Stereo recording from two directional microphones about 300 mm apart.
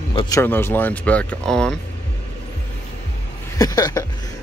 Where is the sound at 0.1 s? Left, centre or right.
Centre.